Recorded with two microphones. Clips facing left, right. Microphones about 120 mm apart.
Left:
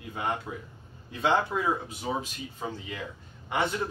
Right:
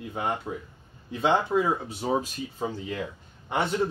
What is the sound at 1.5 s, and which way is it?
Speech, 30° right (ahead or behind).